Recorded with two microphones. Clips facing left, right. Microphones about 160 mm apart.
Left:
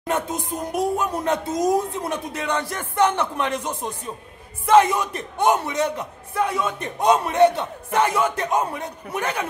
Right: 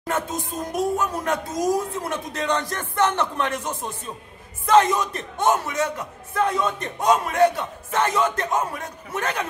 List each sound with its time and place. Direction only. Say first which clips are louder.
0.7 s speech: left 1 dB; 15° left (ahead or behind)
7.1 s a man's voice: left 2 dB; 25° left (ahead or behind)
7.9 s speech: left 1 dB; 10° left (ahead or behind)